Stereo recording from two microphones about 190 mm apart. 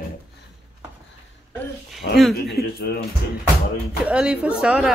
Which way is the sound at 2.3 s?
55° left (ahead or behind).